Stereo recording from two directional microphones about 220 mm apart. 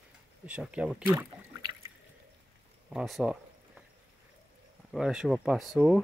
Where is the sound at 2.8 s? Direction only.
Centre (ahead or behind).